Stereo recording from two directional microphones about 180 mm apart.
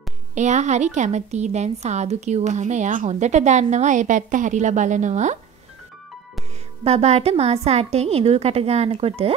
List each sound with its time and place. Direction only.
0.3 s a woman's voice: 40° right (ahead or behind)
6.8 s a woman's voice: 35° right (ahead or behind)